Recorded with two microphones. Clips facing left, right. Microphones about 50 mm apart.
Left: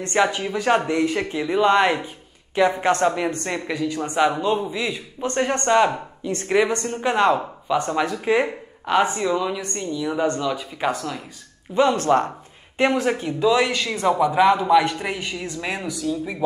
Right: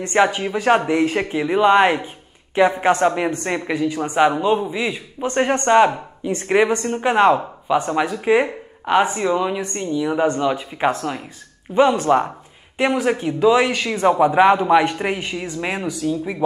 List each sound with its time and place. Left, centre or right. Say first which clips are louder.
0.0 s a man's voice: right 3 dB; right